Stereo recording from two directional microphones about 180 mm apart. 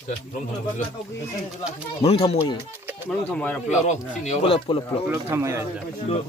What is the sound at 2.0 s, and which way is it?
Speech, 35° left (ahead or behind).